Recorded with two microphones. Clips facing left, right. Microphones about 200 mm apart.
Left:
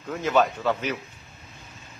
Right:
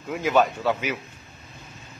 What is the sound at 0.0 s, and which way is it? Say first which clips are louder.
Speech: right 1 dB; 10° right (ahead or behind).